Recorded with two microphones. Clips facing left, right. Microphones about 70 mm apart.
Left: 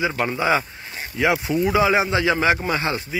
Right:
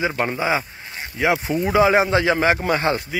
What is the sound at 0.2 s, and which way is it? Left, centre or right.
Speech, right.